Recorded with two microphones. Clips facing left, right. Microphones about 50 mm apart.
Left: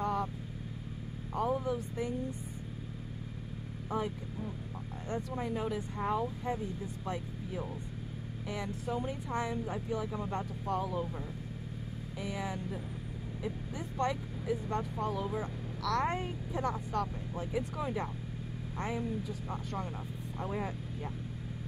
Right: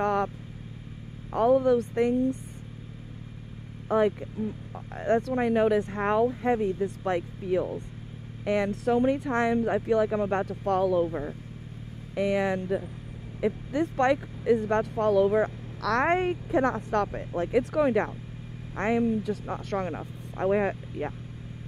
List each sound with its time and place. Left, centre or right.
0.0 s vehicle: right
1.3 s speech: right
3.9 s speech: right
12.2 s speech: right